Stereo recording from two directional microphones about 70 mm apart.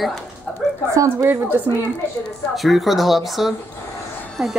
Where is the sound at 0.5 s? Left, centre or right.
Right.